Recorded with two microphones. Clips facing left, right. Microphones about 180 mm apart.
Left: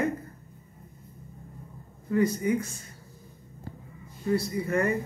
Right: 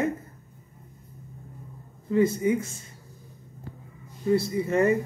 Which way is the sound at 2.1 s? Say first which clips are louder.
Right 2 dB; 25° right (ahead or behind).